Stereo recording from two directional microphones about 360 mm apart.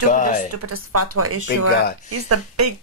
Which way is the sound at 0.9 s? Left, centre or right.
Right.